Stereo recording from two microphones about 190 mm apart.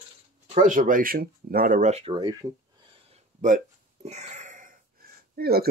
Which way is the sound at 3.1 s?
40° right (ahead or behind).